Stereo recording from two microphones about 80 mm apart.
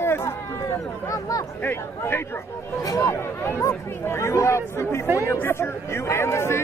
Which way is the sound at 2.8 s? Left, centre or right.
Left.